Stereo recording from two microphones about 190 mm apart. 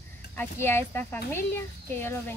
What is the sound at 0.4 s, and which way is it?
Speech, 10° left (ahead or behind).